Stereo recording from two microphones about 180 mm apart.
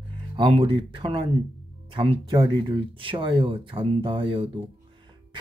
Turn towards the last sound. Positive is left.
turn(degrees=-30)  # may be behind; listen again after turning